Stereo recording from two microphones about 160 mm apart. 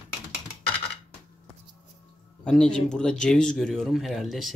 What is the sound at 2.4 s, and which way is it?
Speech, 5° left (ahead or behind).